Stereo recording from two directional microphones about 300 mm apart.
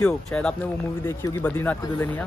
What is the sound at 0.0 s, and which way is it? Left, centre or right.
Speech, centre.